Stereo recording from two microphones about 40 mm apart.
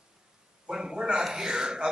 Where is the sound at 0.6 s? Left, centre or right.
Centre.